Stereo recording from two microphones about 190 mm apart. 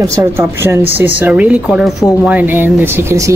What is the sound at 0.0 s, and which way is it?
Speech, 15° right (ahead or behind).